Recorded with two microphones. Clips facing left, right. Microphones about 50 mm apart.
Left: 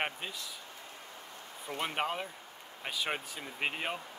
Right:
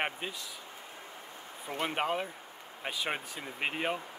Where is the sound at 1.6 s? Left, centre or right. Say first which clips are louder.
Right 2 dB; centre.